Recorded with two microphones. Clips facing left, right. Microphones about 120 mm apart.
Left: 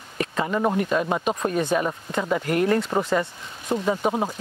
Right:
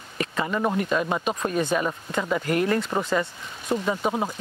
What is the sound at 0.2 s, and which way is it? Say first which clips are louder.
Speech: left 2 dB; 30° left (ahead or behind).